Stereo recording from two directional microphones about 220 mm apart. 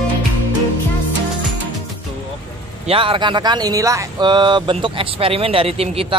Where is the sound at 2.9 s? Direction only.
25° right (ahead or behind).